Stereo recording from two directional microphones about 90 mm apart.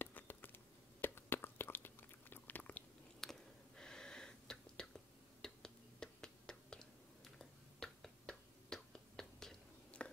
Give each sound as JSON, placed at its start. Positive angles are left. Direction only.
{"t": 0.0, "sound": "a sound", "side_deg": 20}
{"t": 1.0, "sound": "chewing", "side_deg": 25}
{"t": 3.2, "sound": "whispering", "side_deg": 5}